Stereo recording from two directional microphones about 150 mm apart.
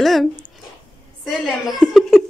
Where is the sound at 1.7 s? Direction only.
Centre (ahead or behind).